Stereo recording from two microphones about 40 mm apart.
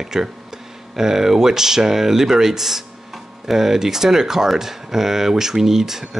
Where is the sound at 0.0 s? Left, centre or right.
Centre.